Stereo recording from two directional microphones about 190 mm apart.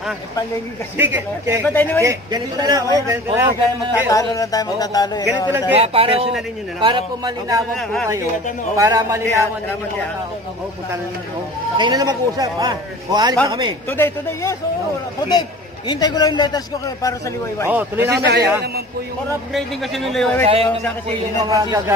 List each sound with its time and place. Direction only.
0.9 s speech: 10° right (ahead or behind)
1.6 s speech: 10° left (ahead or behind)
2.0 s speech: 20° right (ahead or behind)
4.1 s speech: 20° left (ahead or behind)
5.8 s a man's voice: 30° right (ahead or behind)
7.7 s speech: centre (ahead or behind)
8.7 s speech: 15° right (ahead or behind)
11.7 s a man's voice: 20° right (ahead or behind)
13.8 s speech: 15° left (ahead or behind)
15.9 s speech: 20° left (ahead or behind)
17.6 s speech: 10° right (ahead or behind)
18.1 s a man's voice: 60° right (ahead or behind)
20.1 s speech: 5° left (ahead or behind)
21.5 s speech: 20° right (ahead or behind)